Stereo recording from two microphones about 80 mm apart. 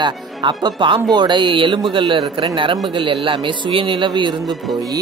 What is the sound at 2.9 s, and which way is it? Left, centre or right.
Speech, right.